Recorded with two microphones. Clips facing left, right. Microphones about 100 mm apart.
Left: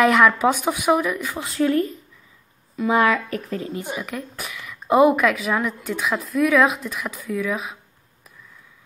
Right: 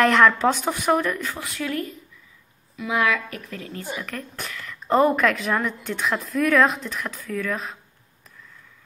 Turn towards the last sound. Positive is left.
turn(degrees=10)  # may be behind; listen again after turning